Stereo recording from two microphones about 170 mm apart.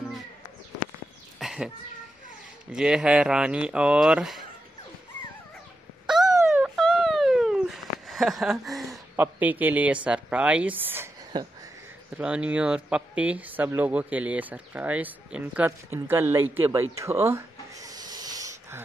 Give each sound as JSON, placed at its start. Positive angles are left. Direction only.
{"t": 1.4, "sound": "cat", "side_deg": 0}
{"t": 2.7, "sound": "speech", "side_deg": -5}
{"t": 6.0, "sound": "a sound", "side_deg": 0}
{"t": 9.1, "sound": "speech", "side_deg": -10}
{"t": 11.3, "sound": "a sound", "side_deg": -25}
{"t": 12.2, "sound": "speech", "side_deg": -5}